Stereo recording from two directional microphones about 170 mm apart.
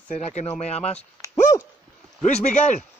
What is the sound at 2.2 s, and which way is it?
Speech, 45° left (ahead or behind).